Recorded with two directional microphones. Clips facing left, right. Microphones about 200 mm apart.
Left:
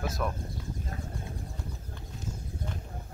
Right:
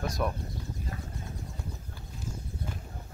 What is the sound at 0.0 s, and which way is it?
Speech, 5° left (ahead or behind).